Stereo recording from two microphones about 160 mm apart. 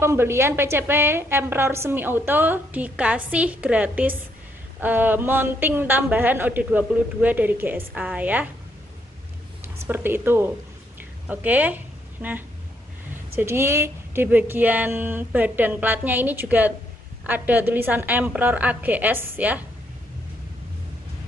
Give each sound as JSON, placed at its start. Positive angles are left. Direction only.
{"t": 0.0, "sound": "a woman's voice", "side_deg": -15}
{"t": 9.8, "sound": "a woman's voice", "side_deg": -15}
{"t": 11.0, "sound": "a sound", "side_deg": -10}
{"t": 13.3, "sound": "a woman's voice", "side_deg": -15}